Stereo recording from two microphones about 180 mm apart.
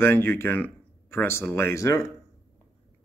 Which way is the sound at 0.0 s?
10° left (ahead or behind).